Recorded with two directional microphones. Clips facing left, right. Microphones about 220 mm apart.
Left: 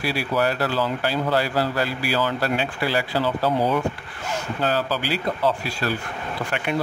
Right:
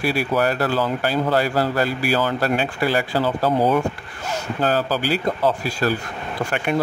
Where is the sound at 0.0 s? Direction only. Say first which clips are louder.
Right 3 dB; 50° right (ahead or behind).